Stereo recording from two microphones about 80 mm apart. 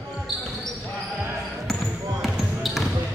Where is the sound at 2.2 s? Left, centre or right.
Centre.